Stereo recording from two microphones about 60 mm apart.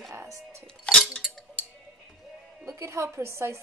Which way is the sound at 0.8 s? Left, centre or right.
Centre.